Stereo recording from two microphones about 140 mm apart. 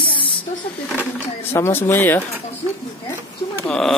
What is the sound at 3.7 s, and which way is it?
Speech, centre (ahead or behind).